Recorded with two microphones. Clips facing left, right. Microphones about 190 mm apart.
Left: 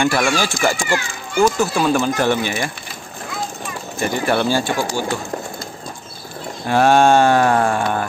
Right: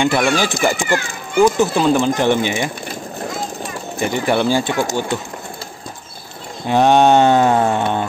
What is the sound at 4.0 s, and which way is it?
Speech, 15° right (ahead or behind).